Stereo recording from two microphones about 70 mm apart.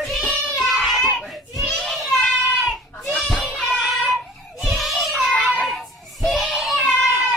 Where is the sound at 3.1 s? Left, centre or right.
Centre.